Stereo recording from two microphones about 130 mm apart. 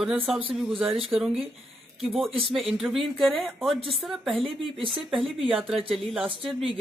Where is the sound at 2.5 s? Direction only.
Centre (ahead or behind).